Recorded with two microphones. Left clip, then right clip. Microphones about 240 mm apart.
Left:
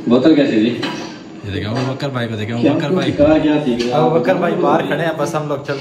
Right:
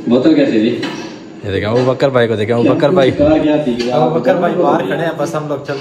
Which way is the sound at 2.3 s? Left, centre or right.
Centre.